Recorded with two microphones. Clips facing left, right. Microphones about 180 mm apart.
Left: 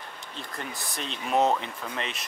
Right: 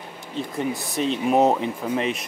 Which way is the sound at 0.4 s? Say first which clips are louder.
Right 12 dB; centre (ahead or behind).